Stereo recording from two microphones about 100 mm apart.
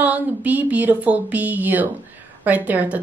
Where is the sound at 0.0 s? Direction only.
15° right (ahead or behind).